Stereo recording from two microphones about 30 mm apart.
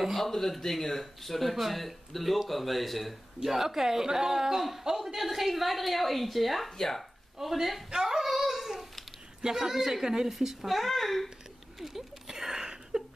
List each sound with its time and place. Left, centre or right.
0.1 s a man's voice: centre
3.4 s a man's voice: centre
7.3 s a man's voice: centre
8.3 s a sound: centre
9.4 s a man's voice: centre
10.7 s a man's voice: centre
11.8 s a sound: centre